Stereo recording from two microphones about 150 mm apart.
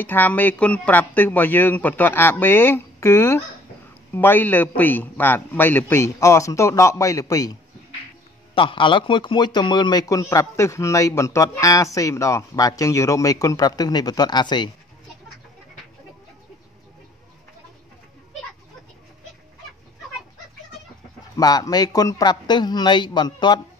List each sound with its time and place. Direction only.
0.0 s a man's voice: 10° left (ahead or behind)
8.5 s a man's voice: 35° left (ahead or behind)
21.4 s a man's voice: 25° left (ahead or behind)